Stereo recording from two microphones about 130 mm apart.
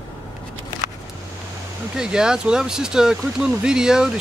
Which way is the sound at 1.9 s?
5° right (ahead or behind).